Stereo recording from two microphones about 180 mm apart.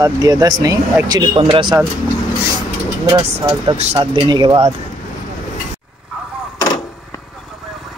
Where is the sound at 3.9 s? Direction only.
25° right (ahead or behind).